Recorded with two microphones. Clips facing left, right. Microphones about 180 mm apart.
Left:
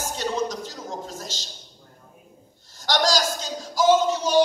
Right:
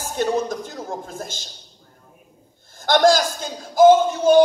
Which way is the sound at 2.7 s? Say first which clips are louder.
Right 7 dB; 55° right (ahead or behind).